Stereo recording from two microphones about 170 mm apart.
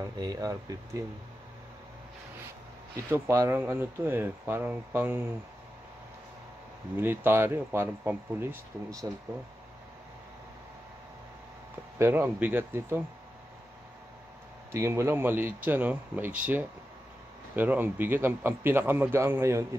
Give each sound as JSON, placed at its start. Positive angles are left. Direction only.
{"t": 0.0, "sound": "speech", "side_deg": -20}
{"t": 3.1, "sound": "speech", "side_deg": -15}
{"t": 7.0, "sound": "speech", "side_deg": -15}
{"t": 12.0, "sound": "speech", "side_deg": -15}
{"t": 14.7, "sound": "speech", "side_deg": -15}